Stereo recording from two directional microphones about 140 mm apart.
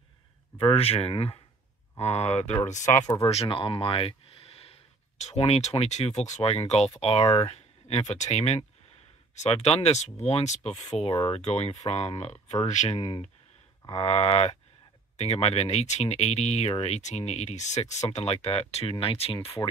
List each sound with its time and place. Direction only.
0.6 s speech: 40° left (ahead or behind); by 3.1 s 60° left (ahead or behind)
3.2 s speech: 45° left (ahead or behind)
4.6 s speech: 50° left (ahead or behind)
7.5 s speech: 50° left (ahead or behind)